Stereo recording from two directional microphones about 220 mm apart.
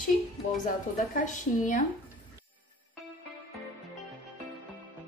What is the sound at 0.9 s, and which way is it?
Speech, 35° left (ahead or behind).